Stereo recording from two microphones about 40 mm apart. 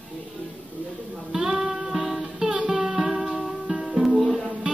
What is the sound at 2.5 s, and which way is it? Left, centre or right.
Music, right.